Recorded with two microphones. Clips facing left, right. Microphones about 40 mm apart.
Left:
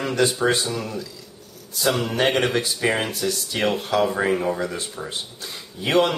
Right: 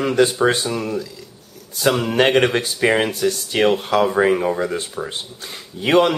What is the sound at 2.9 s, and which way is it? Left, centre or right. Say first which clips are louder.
Speech: right 8 dB; right.